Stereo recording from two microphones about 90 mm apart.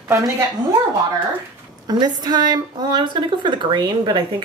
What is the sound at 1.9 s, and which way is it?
A woman's voice, 50° right (ahead or behind).